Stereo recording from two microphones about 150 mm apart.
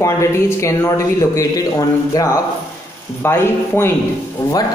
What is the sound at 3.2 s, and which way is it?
Speech, 15° left (ahead or behind).